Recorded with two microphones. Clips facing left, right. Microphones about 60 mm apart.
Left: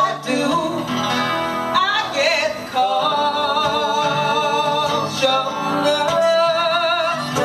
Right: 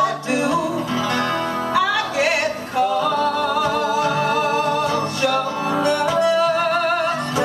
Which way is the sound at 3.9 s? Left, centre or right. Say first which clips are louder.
Left 1 dB; left.